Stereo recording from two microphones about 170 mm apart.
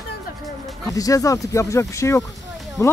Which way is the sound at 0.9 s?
20° left (ahead or behind).